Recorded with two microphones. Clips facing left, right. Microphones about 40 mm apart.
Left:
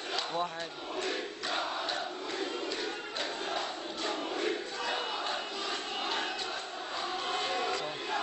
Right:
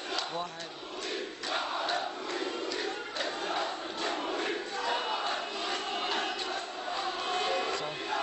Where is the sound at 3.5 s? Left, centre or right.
Centre.